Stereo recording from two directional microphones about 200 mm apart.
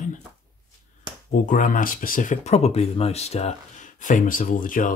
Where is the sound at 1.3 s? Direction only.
40° left (ahead or behind).